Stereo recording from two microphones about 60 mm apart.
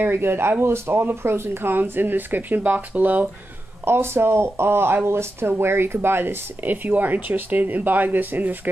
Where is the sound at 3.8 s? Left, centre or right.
Right.